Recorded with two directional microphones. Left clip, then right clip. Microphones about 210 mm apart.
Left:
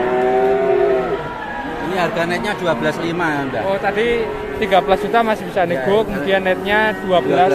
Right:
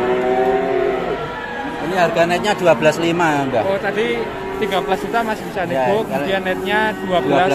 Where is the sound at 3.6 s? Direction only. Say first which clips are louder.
Left 1 dB; 10° left (ahead or behind).